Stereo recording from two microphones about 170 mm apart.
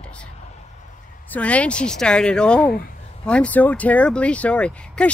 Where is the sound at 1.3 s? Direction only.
5° left (ahead or behind).